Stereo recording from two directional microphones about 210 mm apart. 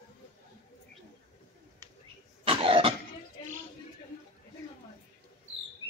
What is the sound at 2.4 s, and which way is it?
Cough, 25° right (ahead or behind).